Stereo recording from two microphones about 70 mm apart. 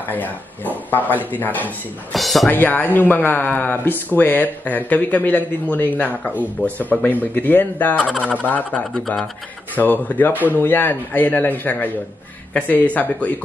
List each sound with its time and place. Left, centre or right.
0.1 s speech: left
2.1 s speech: centre
2.5 s speech: left